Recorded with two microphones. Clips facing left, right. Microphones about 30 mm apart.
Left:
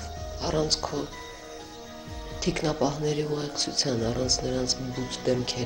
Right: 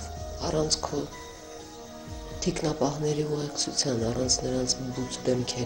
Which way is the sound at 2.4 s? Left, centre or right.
Left.